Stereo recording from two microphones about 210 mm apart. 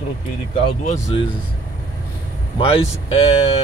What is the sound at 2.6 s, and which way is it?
Speech, 25° left (ahead or behind).